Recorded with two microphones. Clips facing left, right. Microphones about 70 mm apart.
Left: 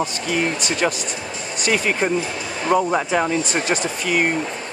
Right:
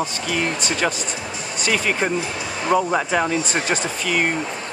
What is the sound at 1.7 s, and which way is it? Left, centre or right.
Speech, centre.